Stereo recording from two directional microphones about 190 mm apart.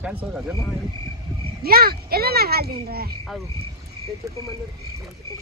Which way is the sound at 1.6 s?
55° right (ahead or behind).